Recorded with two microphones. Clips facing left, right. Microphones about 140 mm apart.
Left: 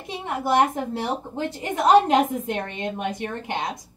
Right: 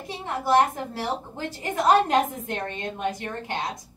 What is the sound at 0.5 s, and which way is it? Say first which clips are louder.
A woman's voice: even; 20° left (ahead or behind).